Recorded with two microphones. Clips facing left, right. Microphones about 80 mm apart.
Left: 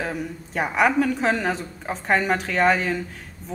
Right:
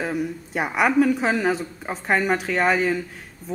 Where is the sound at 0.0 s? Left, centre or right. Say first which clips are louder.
Right 3 dB; centre.